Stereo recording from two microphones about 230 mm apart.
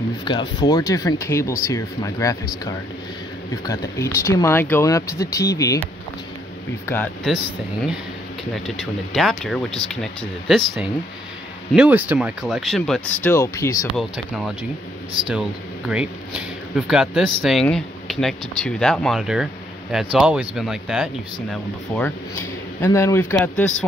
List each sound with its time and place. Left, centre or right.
0.2 s speech: centre
6.9 s speech: centre
8.6 s speech: centre
13.9 s speech: centre
15.9 s speech: centre
22.0 s speech: centre